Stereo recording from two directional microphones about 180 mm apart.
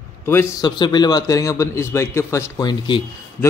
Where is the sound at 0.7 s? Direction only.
25° left (ahead or behind).